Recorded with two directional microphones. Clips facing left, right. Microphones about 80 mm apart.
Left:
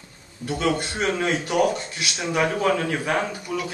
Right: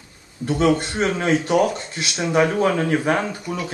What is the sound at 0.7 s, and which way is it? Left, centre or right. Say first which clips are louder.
A man's voice: right 3 dB; right.